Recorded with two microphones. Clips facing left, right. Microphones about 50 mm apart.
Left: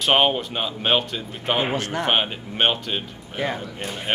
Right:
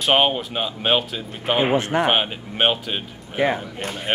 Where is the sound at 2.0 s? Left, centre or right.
Centre.